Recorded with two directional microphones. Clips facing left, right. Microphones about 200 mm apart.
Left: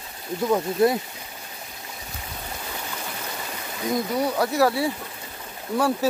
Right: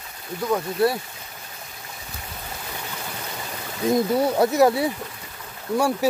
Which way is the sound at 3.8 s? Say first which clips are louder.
Right 4 dB; 25° right (ahead or behind).